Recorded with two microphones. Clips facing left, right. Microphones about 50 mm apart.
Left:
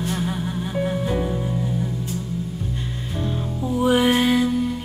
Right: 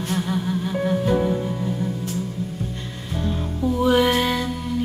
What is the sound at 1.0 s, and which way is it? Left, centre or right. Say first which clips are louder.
Music: right 3 dB; right.